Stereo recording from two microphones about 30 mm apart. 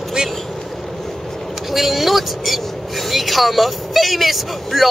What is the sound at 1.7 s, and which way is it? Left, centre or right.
Speech, centre.